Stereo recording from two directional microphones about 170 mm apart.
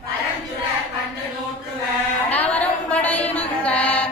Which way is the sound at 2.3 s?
10° left (ahead or behind).